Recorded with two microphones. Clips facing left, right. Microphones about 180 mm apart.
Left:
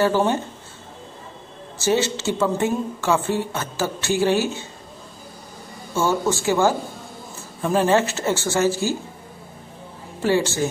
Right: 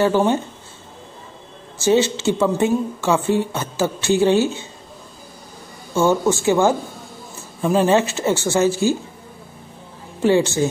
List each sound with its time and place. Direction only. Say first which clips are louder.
0.0 s speech: right 2 dB; 20° right (ahead or behind)
1.8 s a woman's voice: right 4 dB; 15° right (ahead or behind)
5.9 s a woman's voice: right 4 dB; 15° right (ahead or behind)
10.2 s a woman's voice: right 4 dB; 20° right (ahead or behind)